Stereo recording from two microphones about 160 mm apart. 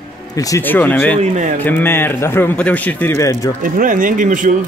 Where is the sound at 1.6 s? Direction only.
10° left (ahead or behind).